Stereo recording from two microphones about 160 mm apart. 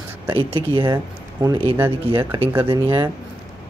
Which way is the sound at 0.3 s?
35° right (ahead or behind).